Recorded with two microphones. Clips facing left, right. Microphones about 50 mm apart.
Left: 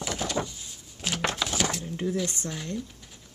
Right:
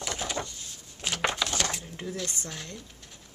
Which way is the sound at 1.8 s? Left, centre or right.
Centre.